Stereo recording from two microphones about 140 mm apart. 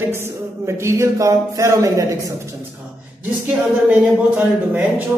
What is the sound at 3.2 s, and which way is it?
Speech, 10° right (ahead or behind).